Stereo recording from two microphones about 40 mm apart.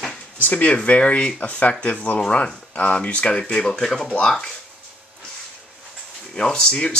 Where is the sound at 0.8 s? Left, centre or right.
Left.